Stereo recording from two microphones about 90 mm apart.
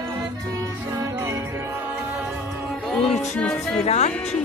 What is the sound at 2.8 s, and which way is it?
Music, 5° left (ahead or behind).